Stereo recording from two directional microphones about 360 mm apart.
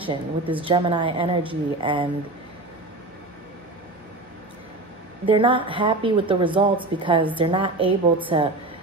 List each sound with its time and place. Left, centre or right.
0.0 s a woman's voice: centre
5.2 s a woman's voice: centre